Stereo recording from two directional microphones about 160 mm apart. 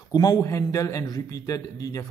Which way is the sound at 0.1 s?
25° left (ahead or behind).